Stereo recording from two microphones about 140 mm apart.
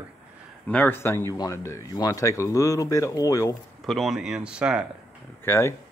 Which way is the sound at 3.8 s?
Centre (ahead or behind).